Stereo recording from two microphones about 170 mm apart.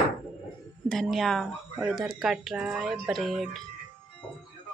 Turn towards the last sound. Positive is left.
turn(degrees=0)  # may be behind; listen again after turning